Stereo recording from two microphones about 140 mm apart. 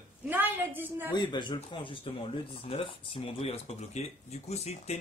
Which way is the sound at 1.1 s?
35° left (ahead or behind).